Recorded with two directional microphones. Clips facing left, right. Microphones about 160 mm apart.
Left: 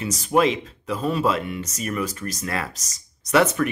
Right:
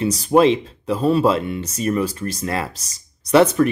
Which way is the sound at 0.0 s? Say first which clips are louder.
Right 5 dB; 30° right (ahead or behind).